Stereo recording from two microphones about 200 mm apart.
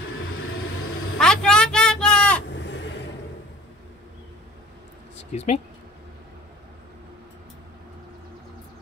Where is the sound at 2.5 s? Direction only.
60° left (ahead or behind).